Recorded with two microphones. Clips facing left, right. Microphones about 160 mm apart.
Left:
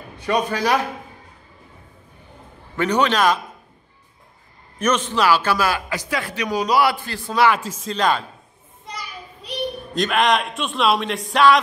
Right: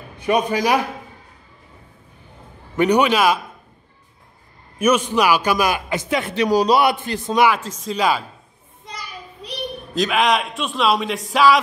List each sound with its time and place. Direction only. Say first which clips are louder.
0.2 s a man's voice: right 2 dB; 15° right (ahead or behind)
2.7 s a man's voice: right 3 dB; 15° right (ahead or behind)
4.7 s a man's voice: right 3 dB; 10° right (ahead or behind); by 6.8 s 30° right (ahead or behind)
6.8 s a man's voice: right 1 dB; 20° right (ahead or behind)
7.5 s a man's voice: right 1 dB; 5° left (ahead or behind)
9.9 s a man's voice: right 1 dB; centre (ahead or behind)